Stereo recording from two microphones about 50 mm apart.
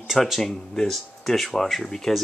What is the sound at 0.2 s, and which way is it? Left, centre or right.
Speech, centre.